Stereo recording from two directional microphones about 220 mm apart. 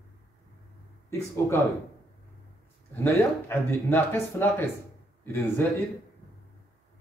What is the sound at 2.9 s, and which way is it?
Speech, 10° left (ahead or behind).